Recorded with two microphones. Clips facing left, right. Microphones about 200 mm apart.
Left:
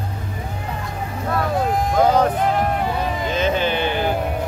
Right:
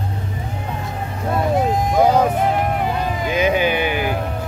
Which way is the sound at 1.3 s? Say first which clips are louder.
Right 2 dB; 20° right (ahead or behind).